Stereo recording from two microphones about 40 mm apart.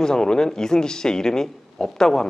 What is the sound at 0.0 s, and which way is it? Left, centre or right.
Speech, centre.